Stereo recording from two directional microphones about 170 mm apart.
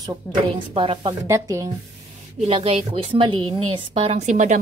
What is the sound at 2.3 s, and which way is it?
A woman's voice, 35° right (ahead or behind).